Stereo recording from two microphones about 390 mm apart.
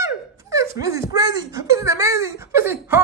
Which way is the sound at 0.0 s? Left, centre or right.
Centre.